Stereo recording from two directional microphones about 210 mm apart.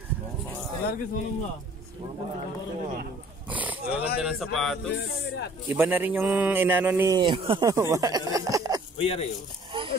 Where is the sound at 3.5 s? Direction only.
5° right (ahead or behind).